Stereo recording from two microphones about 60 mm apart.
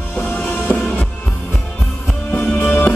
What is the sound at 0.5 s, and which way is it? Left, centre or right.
Music, left.